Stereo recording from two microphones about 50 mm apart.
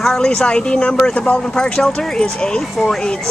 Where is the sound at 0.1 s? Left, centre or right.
Centre.